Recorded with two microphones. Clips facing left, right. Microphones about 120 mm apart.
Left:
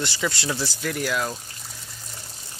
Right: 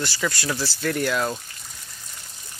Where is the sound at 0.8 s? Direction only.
5° left (ahead or behind).